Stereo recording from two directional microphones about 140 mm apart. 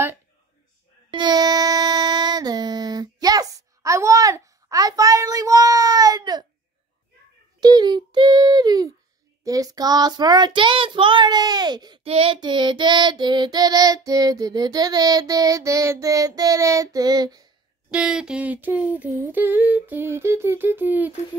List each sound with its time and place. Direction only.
1.1 s child singing: 30° right (ahead or behind)
7.6 s child singing: 30° right (ahead or behind)
12.0 s child singing: 45° right (ahead or behind); by 17.4 s 30° right (ahead or behind)
17.8 s a sound: 5° right (ahead or behind)